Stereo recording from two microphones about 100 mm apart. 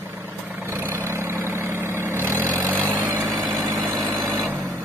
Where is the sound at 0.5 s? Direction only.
25° right (ahead or behind).